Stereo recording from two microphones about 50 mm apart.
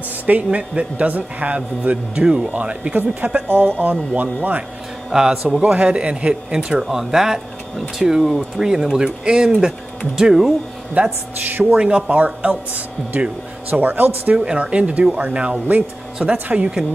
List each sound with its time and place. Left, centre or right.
0.3 s a man's voice: right
5.1 s speech: centre
5.6 s a man's voice: right
6.8 s speech: centre
11.0 s speech: right
11.7 s a man's voice: centre
12.2 s speech: right
14.3 s a man's voice: right